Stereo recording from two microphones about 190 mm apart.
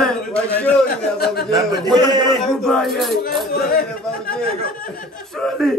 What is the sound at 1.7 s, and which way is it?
Speech, 20° right (ahead or behind).